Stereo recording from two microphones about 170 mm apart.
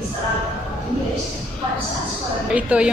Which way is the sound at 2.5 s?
5° right (ahead or behind).